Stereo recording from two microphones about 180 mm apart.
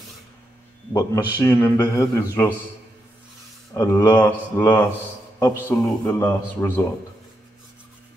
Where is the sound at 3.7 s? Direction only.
20° left (ahead or behind).